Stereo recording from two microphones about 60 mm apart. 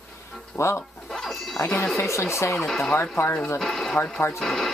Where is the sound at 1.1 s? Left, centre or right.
Centre.